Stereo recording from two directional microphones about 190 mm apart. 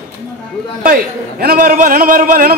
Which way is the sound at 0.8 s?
50° right (ahead or behind).